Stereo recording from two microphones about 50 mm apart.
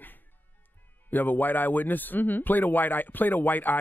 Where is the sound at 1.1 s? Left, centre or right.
Left.